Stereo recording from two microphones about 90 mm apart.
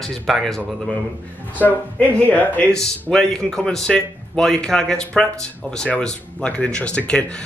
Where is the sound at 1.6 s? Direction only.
20° left (ahead or behind).